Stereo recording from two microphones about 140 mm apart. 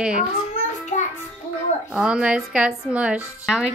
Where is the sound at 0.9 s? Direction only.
60° left (ahead or behind).